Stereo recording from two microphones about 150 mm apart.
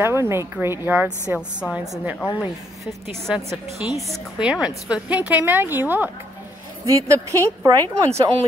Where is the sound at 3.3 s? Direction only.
5° right (ahead or behind); by 8.2 s 20° right (ahead or behind).